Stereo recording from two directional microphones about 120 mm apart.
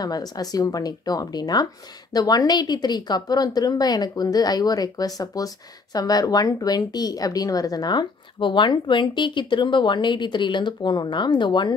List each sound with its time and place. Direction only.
0.0 s a woman's voice: 35° left (ahead or behind)